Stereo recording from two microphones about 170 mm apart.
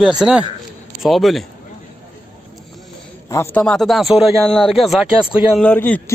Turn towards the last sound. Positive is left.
turn(degrees=10)  # may be behind; listen again after turning